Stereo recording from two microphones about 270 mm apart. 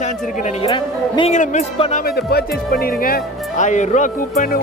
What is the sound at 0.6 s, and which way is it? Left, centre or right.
Speech, centre.